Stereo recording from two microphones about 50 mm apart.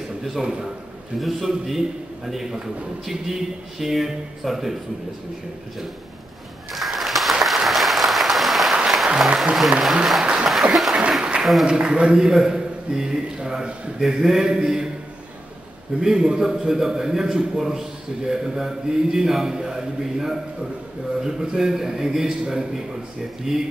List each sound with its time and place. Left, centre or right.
0.2 s a man's voice: centre
3.8 s speech: centre
6.7 s a sound: centre
7.4 s applause: centre
9.6 s speech: centre
10.2 s a sound: centre
10.5 s applause: centre
11.0 s applause: centre
11.6 s a man's voice: centre
16.0 s a man's voice: centre